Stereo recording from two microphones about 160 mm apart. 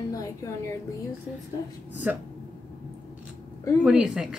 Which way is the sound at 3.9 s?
5° right (ahead or behind).